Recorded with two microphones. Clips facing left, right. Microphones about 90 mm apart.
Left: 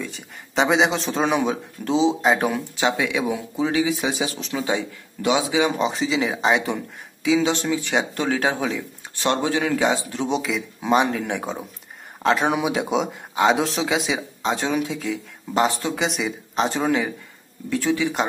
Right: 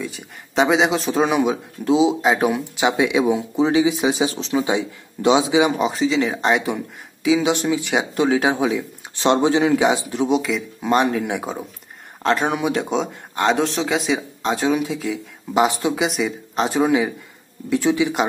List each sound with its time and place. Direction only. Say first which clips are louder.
0.0 s speech: right 3 dB; 5° right (ahead or behind); by 5.7 s 20° right (ahead or behind)
5.8 s speech: right 3 dB; centre (ahead or behind)
9.1 s speech: right 5 dB; 20° right (ahead or behind)
10.3 s speech: right 3 dB; centre (ahead or behind)
15.9 s speech: right 3 dB; centre (ahead or behind)